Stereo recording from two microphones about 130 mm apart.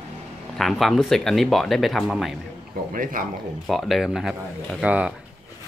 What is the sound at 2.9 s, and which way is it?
Speech, 90° right.